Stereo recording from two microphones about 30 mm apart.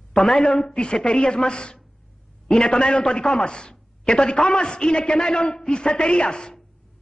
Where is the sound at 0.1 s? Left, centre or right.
Centre.